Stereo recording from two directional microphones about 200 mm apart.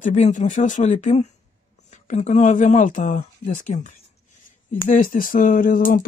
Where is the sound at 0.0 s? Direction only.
40° left (ahead or behind).